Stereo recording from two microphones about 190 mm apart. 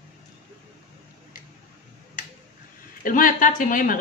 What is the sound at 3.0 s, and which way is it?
Speech, 45° left (ahead or behind).